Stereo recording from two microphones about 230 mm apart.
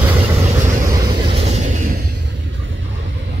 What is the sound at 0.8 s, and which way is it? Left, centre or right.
Vehicle, centre.